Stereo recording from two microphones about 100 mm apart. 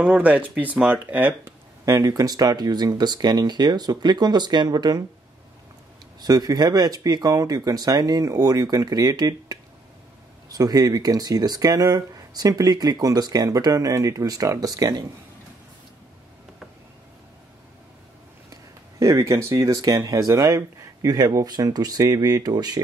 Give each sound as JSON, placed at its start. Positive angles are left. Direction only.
{"t": 0.0, "sound": "speech", "side_deg": -15}
{"t": 1.9, "sound": "speech", "side_deg": -35}
{"t": 6.2, "sound": "speech", "side_deg": -40}
{"t": 18.5, "sound": "speech", "side_deg": -30}